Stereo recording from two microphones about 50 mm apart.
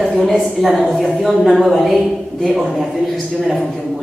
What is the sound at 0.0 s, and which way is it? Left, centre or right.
A woman's voice, centre.